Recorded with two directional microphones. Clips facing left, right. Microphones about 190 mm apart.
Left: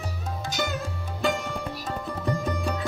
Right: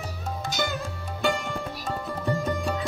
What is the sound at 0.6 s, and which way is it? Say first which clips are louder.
Music: even; centre (ahead or behind).